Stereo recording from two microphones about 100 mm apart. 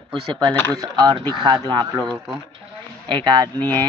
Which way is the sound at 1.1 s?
50° right (ahead or behind).